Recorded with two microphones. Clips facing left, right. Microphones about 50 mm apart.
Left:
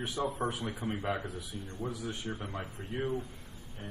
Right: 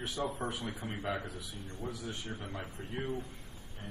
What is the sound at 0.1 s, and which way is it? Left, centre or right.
A man's voice, left.